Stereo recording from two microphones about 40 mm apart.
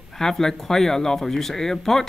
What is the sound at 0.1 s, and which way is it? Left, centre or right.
Speech, centre.